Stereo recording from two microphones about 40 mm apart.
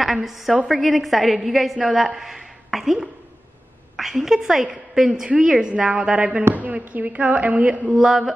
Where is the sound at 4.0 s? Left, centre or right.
Centre.